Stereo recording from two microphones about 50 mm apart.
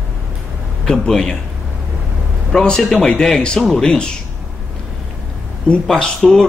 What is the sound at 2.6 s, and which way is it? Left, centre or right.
Speech, centre.